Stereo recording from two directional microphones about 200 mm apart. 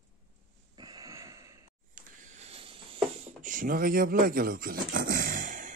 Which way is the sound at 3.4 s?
40° right (ahead or behind).